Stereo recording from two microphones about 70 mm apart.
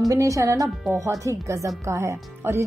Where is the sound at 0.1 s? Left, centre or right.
Right.